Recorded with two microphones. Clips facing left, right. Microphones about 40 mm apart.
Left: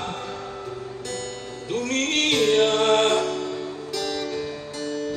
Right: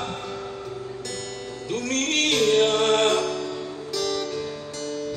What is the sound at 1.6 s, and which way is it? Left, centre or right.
Music, centre.